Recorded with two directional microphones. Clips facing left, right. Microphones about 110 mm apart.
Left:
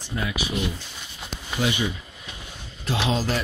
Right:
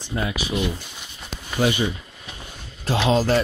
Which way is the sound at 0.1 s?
35° right (ahead or behind).